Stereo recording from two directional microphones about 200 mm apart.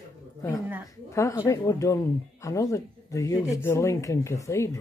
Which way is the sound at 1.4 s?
15° left (ahead or behind).